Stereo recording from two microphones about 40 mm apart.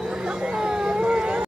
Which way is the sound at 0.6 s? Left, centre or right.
Centre.